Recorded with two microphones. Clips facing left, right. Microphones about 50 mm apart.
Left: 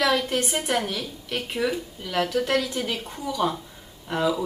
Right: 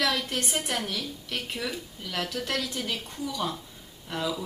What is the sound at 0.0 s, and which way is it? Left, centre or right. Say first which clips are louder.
A woman's voice: left 5 dB; centre.